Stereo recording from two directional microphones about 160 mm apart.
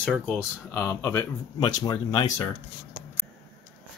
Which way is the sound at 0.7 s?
15° left (ahead or behind).